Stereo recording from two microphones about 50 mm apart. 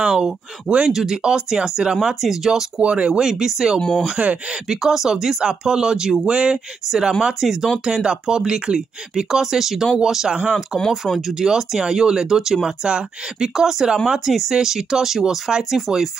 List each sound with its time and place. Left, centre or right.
0.0 s speech: centre
2.8 s speech: right
3.1 s speech: centre
4.2 s speech: right
4.6 s speech: centre
7.3 s speech: centre
7.8 s speech: centre